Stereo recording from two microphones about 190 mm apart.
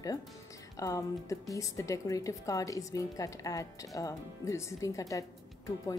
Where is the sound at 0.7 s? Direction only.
15° left (ahead or behind).